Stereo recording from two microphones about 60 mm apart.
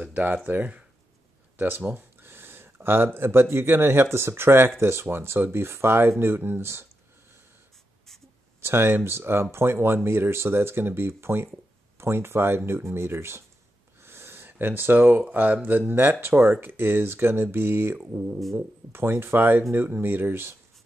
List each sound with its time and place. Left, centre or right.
0.1 s speech: right
8.5 s speech: right
14.0 s a sound: right
15.3 s speech: right